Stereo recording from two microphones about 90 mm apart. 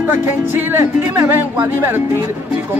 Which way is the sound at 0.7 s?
30° right (ahead or behind).